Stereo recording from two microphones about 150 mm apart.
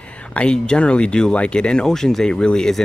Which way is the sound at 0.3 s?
5° left (ahead or behind).